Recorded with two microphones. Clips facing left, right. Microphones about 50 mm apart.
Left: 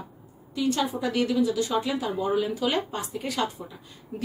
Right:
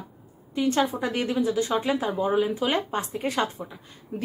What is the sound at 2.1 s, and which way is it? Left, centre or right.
Speech, right.